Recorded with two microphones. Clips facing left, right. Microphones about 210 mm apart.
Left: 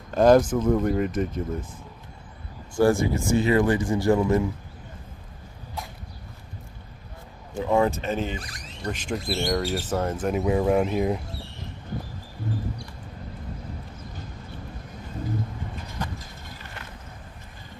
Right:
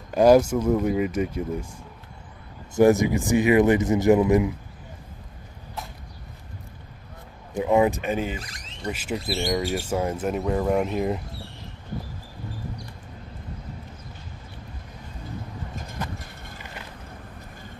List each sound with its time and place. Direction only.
0.1 s speech: 10° right (ahead or behind)
7.5 s speech: 15° right (ahead or behind)
8.4 s speech: 25° right (ahead or behind)
8.8 s speech: 5° right (ahead or behind)
10.3 s speech: 5° left (ahead or behind)